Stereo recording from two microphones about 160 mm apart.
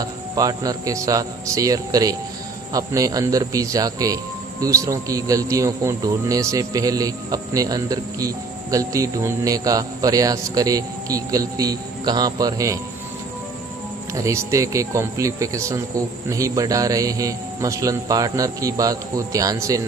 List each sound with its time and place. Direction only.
0.0 s a man's voice: 25° right (ahead or behind)
14.1 s a man's voice: 20° right (ahead or behind)